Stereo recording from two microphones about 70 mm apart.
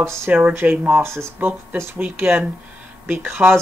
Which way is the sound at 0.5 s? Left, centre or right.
Right.